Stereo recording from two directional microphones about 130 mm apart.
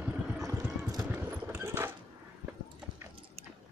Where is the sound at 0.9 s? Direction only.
30° right (ahead or behind).